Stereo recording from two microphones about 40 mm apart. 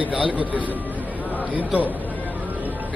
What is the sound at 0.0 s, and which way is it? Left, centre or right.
A man's voice, right.